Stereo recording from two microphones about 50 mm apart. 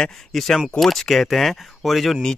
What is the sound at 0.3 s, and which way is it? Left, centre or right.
Speech, centre.